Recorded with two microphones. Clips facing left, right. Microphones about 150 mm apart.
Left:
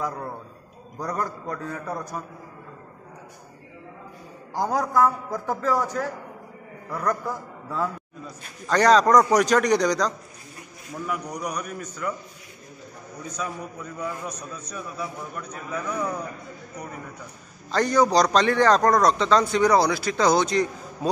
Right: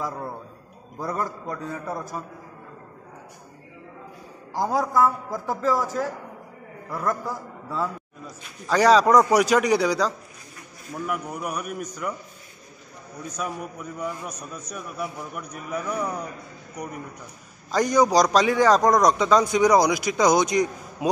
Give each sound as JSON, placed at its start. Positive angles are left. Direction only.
{"t": 0.9, "sound": "a man's voice", "side_deg": -5}
{"t": 4.6, "sound": "a man's voice", "side_deg": 0}
{"t": 6.9, "sound": "a man's voice", "side_deg": -5}
{"t": 13.4, "sound": "a man's voice", "side_deg": -10}
{"t": 17.6, "sound": "a man's voice", "side_deg": -10}